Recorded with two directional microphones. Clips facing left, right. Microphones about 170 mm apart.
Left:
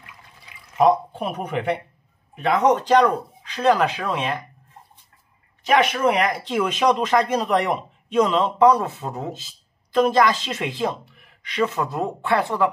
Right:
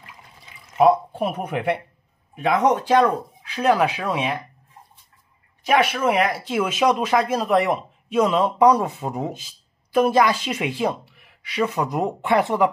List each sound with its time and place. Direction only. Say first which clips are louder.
0.7 s speech: right 1 dB; 10° right (ahead or behind)
5.6 s speech: left 1 dB; 10° right (ahead or behind)